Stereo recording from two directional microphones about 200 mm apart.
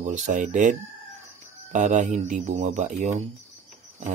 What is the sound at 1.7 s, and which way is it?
Speech, 40° right (ahead or behind).